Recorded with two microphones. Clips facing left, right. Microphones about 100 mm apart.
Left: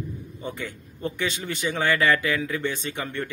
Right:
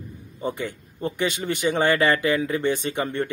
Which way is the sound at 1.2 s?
15° right (ahead or behind).